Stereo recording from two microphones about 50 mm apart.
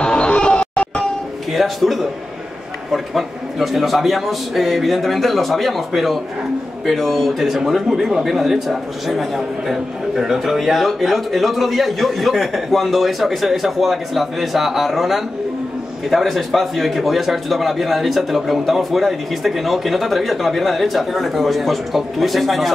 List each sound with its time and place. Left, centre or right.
0.0 s music: centre
1.5 s speech: centre